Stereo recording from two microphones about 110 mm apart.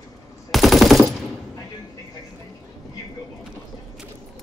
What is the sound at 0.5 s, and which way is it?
Machine gun, centre (ahead or behind).